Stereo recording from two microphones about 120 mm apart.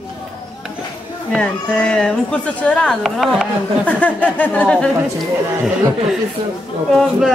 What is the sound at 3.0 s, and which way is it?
Speech, centre (ahead or behind).